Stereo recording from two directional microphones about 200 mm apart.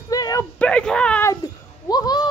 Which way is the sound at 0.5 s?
5° left (ahead or behind).